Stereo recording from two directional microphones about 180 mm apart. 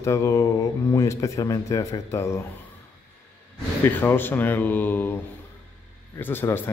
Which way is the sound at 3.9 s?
10° left (ahead or behind).